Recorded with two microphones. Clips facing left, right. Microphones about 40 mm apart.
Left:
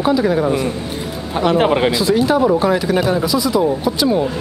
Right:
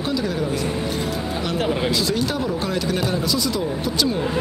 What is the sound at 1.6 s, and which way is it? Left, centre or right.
Speech, left.